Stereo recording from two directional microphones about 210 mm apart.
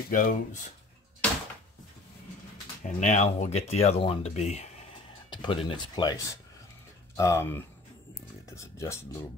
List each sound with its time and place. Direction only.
0.1 s speech: 40° left (ahead or behind)
2.8 s speech: 35° left (ahead or behind); by 7.6 s 10° left (ahead or behind)
8.1 s a sound: 15° left (ahead or behind)